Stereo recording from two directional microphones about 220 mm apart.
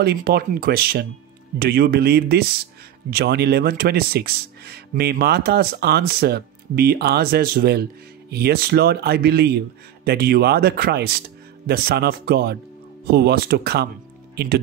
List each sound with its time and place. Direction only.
0.0 s speech: 45° right (ahead or behind)